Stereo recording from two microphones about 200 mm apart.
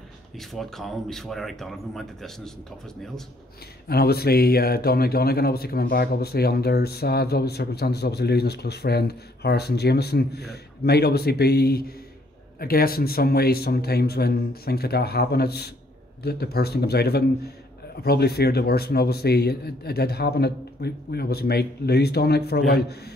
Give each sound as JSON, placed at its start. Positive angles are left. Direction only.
{"t": 0.4, "sound": "speech", "side_deg": 0}
{"t": 3.9, "sound": "speech", "side_deg": 50}